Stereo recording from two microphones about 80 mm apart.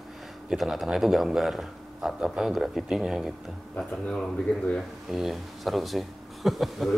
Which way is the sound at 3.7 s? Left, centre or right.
Centre.